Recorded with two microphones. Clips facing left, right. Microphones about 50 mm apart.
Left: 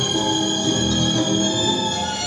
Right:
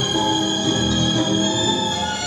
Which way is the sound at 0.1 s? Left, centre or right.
Centre.